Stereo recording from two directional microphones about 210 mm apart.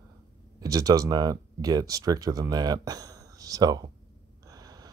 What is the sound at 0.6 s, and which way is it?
Speech, 15° right (ahead or behind).